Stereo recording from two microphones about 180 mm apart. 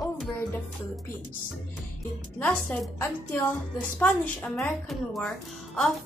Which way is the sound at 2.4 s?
5° left (ahead or behind).